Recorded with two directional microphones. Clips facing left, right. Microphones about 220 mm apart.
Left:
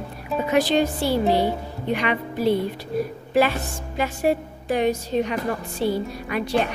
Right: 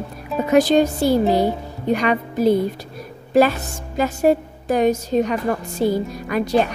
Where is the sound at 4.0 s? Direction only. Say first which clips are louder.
Right 5 dB; 40° right (ahead or behind).